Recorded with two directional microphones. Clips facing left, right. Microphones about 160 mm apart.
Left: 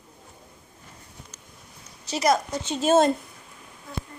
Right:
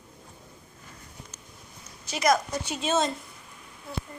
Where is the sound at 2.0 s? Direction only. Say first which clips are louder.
Left 2 dB; 35° left (ahead or behind).